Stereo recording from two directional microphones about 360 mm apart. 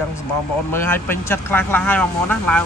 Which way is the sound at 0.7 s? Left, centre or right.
Centre.